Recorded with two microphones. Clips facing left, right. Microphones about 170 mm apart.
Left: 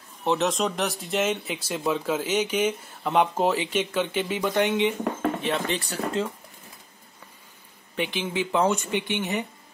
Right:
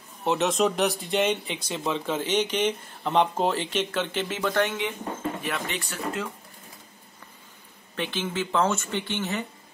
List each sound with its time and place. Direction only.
0.2 s speech: centre (ahead or behind); by 6.2 s 35° left (ahead or behind)
7.9 s speech: 15° left (ahead or behind)